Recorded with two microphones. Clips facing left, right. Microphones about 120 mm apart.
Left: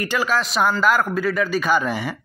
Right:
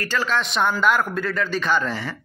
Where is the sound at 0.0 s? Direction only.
15° left (ahead or behind).